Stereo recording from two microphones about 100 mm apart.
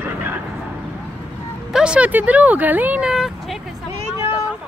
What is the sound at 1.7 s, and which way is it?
Speech, 10° right (ahead or behind).